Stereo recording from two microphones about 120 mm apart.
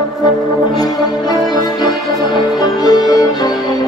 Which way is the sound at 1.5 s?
35° left (ahead or behind).